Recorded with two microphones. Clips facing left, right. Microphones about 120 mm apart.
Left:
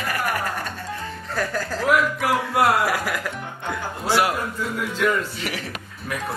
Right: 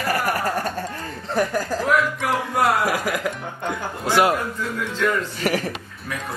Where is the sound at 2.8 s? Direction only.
15° right (ahead or behind).